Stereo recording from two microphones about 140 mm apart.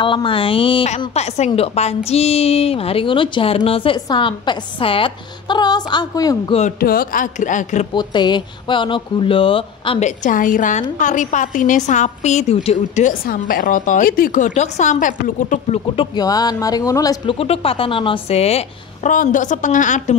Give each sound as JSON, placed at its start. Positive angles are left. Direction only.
{"t": 0.0, "sound": "a woman's voice", "side_deg": 35}
{"t": 6.8, "sound": "a woman's voice", "side_deg": 90}
{"t": 7.9, "sound": "a woman's voice", "side_deg": 35}
{"t": 9.9, "sound": "a woman's voice", "side_deg": 60}
{"t": 13.1, "sound": "a woman's voice", "side_deg": 90}
{"t": 16.2, "sound": "speech", "side_deg": 25}
{"t": 17.3, "sound": "a woman's voice", "side_deg": 45}
{"t": 19.0, "sound": "a woman's voice", "side_deg": 65}